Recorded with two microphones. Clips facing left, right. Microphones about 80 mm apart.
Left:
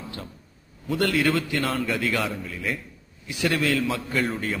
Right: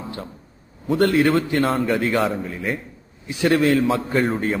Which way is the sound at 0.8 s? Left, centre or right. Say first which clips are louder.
Right 6 dB; right.